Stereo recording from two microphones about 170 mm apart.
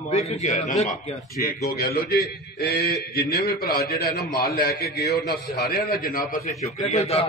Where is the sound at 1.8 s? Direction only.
60° left (ahead or behind).